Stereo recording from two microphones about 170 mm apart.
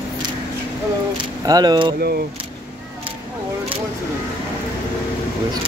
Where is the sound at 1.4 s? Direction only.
25° right (ahead or behind).